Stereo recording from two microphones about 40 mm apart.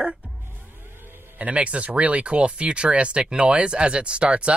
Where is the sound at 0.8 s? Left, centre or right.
Right.